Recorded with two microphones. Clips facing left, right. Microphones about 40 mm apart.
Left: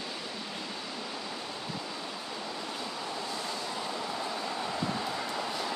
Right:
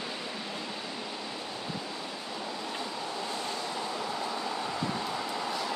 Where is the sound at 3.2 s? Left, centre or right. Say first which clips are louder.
Right 1 dB; right.